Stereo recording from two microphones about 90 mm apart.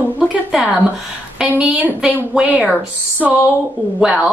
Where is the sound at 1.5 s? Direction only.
15° right (ahead or behind).